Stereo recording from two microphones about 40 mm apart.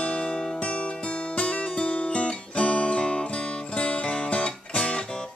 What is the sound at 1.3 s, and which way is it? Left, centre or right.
Guitar, left.